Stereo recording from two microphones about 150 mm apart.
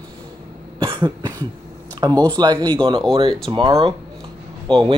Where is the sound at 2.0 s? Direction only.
30° right (ahead or behind).